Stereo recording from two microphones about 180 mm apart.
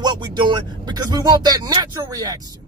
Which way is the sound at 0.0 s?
25° right (ahead or behind).